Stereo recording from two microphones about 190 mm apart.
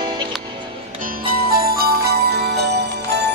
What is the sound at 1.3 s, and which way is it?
Music, 55° right (ahead or behind).